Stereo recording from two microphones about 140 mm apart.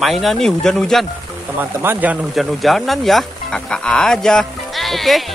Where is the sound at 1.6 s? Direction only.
15° right (ahead or behind).